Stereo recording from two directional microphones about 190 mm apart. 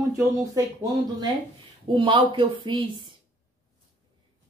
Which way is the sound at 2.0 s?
25° right (ahead or behind).